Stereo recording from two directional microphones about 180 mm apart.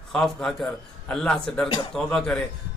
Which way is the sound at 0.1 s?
Centre (ahead or behind).